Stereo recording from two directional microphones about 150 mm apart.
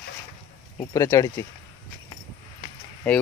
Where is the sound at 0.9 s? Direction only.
20° left (ahead or behind).